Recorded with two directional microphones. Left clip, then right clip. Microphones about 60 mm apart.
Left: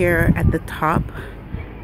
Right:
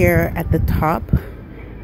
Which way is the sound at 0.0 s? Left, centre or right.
Centre.